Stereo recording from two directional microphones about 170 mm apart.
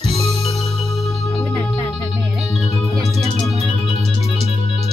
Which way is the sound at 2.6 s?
35° left (ahead or behind).